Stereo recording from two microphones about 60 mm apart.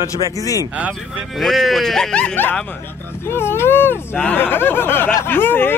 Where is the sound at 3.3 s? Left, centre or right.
Left.